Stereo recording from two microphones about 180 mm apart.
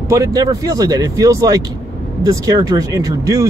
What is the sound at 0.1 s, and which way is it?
Speech, 20° right (ahead or behind).